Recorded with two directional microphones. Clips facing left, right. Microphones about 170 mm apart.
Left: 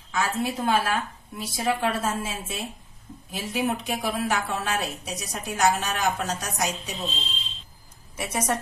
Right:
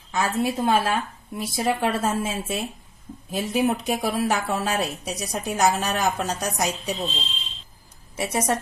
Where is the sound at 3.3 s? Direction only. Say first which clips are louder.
Right 4 dB; 40° right (ahead or behind).